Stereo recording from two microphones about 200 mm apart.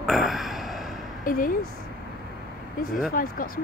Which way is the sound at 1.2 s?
45° left (ahead or behind).